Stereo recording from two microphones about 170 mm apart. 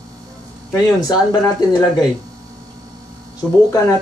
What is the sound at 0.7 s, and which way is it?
Speech, 20° left (ahead or behind).